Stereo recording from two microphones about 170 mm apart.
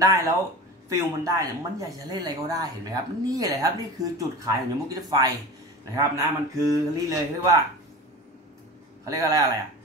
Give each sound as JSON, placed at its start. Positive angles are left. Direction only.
{"t": 0.8, "sound": "speech", "side_deg": -20}
{"t": 9.0, "sound": "speech", "side_deg": -20}